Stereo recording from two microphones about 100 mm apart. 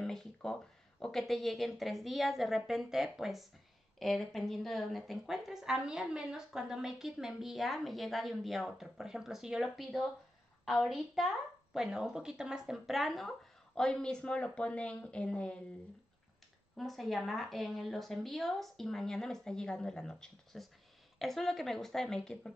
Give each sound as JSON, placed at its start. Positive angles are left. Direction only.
{"t": 0.0, "sound": "a woman's voice", "side_deg": 5}
{"t": 16.7, "sound": "a woman's voice", "side_deg": 0}